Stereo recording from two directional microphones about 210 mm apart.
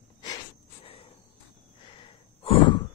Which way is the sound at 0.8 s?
25° left (ahead or behind).